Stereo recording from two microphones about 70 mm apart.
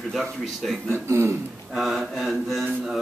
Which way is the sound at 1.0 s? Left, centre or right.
Right.